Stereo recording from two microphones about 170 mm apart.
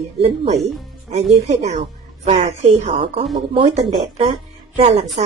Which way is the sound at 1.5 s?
40° right (ahead or behind).